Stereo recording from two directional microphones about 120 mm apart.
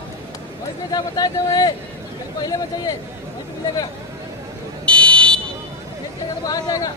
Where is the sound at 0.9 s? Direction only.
35° left (ahead or behind).